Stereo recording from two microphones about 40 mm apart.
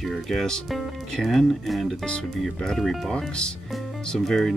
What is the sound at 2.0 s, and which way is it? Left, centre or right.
Speech, left.